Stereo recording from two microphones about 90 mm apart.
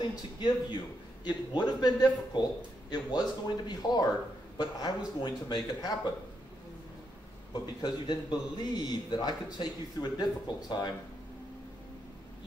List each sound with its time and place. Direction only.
0.1 s a man's voice: 55° left (ahead or behind)
7.6 s a man's voice: 50° left (ahead or behind)